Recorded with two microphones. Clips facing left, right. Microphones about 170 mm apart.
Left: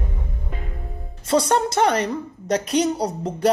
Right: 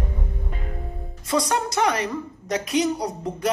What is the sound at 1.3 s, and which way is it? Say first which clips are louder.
Speech: left 4 dB; 30° left (ahead or behind).